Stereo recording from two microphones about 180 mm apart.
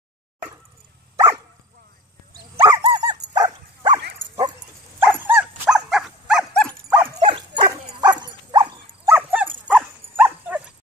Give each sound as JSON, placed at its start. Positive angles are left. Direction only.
{"t": 2.6, "sound": "dog", "side_deg": -25}
{"t": 4.2, "sound": "bow-wow", "side_deg": -90}
{"t": 5.0, "sound": "dog", "side_deg": -10}
{"t": 7.2, "sound": "dog", "side_deg": -30}
{"t": 9.1, "sound": "dog", "side_deg": -10}